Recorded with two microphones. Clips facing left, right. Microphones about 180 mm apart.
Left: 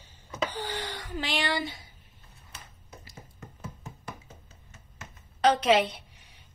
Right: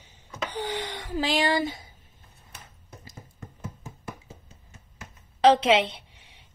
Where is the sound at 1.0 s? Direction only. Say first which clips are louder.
Right 8 dB; 35° right (ahead or behind).